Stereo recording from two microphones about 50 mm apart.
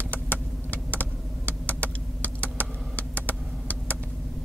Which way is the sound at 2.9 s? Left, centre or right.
Left.